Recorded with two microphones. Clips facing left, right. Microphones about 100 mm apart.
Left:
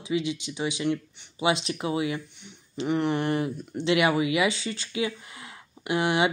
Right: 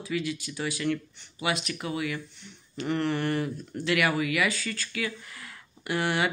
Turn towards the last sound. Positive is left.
turn(degrees=15)  # may be behind; listen again after turning